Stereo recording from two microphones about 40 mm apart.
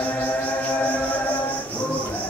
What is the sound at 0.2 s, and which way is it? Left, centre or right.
Music, left.